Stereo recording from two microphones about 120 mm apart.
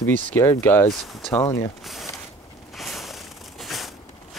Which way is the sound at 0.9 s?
Centre (ahead or behind).